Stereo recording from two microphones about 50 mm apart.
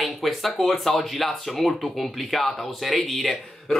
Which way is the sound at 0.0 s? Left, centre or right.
Centre.